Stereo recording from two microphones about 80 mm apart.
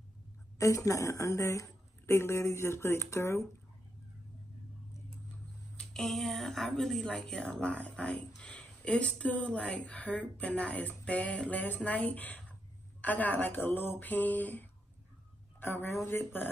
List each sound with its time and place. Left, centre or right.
0.6 s a woman's voice: left
5.8 s a woman's voice: centre; by 16.3 s left